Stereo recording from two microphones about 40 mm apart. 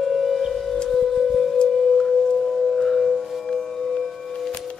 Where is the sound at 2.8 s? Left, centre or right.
Centre.